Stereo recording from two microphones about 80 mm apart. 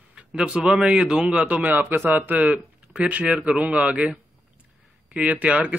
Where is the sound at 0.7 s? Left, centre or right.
Centre.